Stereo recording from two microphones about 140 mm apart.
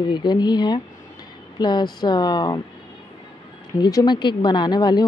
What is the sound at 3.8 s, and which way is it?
Speech, 30° left (ahead or behind).